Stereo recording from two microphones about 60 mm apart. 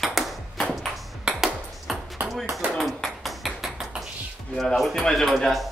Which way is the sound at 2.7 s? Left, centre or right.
Centre.